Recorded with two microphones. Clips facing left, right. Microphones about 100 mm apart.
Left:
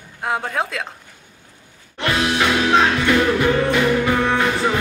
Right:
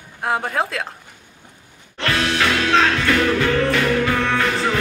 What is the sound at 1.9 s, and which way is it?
Music, 15° left (ahead or behind).